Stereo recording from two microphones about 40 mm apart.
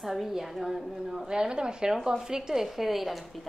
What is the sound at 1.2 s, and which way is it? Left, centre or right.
A woman's voice, right.